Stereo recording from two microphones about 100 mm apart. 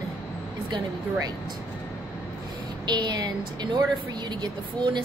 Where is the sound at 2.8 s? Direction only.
45° right (ahead or behind).